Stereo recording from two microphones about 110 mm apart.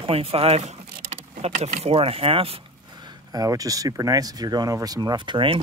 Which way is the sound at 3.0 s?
40° right (ahead or behind).